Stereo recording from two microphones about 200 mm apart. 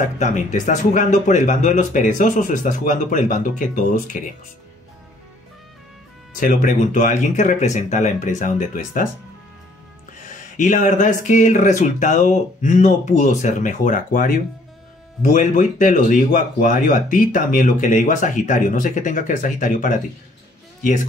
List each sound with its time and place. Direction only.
0.0 s speech: 35° left (ahead or behind)
6.4 s speech: 45° left (ahead or behind)
10.2 s speech: 40° left (ahead or behind)